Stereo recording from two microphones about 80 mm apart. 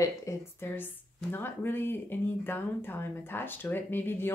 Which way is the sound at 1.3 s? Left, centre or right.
Left.